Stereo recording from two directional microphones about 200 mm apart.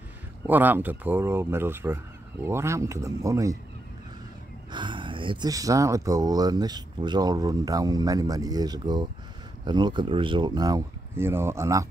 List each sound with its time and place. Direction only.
0.5 s speech: 10° right (ahead or behind)
4.6 s speech: 25° right (ahead or behind)